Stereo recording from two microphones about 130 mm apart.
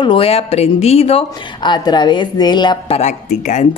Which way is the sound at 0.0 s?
45° left (ahead or behind).